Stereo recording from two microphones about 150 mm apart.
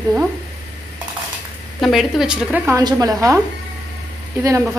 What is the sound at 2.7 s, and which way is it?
Speech, 25° right (ahead or behind).